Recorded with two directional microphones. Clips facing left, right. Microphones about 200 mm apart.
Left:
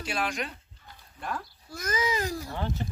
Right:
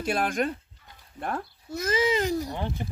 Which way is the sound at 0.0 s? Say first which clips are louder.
Right 6 dB; 50° right (ahead or behind).